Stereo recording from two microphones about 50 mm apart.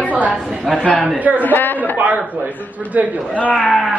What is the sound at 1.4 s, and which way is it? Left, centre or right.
Speech, left.